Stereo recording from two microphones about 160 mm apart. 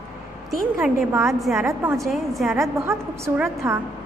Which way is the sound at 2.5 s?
15° right (ahead or behind).